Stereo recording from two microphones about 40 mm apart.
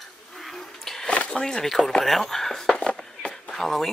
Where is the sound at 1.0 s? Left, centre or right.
Left.